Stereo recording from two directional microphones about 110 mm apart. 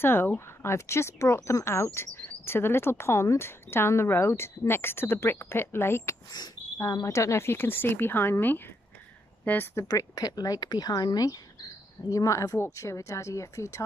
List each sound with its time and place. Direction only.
0.0 s speech: 20° left (ahead or behind)
9.8 s speech: 35° left (ahead or behind)